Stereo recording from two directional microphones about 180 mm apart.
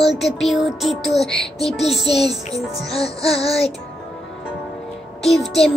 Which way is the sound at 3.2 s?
35° left (ahead or behind).